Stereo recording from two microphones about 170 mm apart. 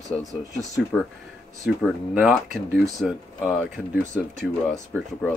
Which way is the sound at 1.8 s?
5° right (ahead or behind).